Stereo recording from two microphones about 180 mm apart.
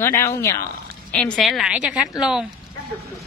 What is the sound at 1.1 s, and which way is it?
Speech, 5° left (ahead or behind).